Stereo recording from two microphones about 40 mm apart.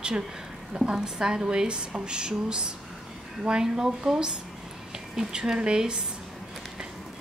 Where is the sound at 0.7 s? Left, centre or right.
Centre.